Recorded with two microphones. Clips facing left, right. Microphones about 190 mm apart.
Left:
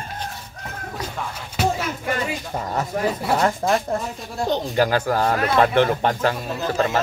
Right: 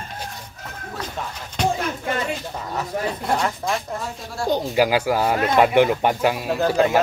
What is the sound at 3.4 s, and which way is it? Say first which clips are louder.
Speech: left 4 dB; 45° left (ahead or behind).